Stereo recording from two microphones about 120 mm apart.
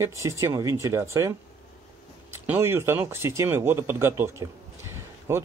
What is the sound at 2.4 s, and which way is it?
Speech, 15° right (ahead or behind).